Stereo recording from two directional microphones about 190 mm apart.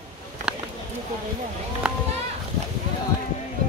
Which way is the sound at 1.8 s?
5° right (ahead or behind).